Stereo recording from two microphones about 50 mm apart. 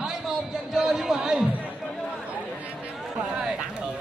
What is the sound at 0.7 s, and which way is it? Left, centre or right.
Speech, centre.